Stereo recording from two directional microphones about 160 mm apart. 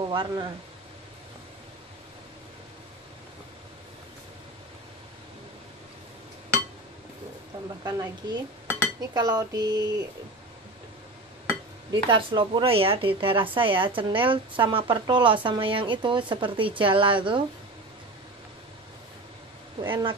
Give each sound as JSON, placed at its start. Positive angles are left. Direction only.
{"t": 0.1, "sound": "speech", "side_deg": -30}
{"t": 7.8, "sound": "speech", "side_deg": -20}
{"t": 11.9, "sound": "a woman's voice", "side_deg": -30}
{"t": 19.8, "sound": "speech", "side_deg": -30}